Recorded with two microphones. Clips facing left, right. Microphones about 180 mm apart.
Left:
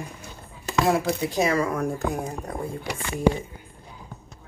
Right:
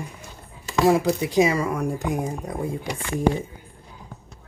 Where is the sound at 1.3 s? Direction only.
10° right (ahead or behind).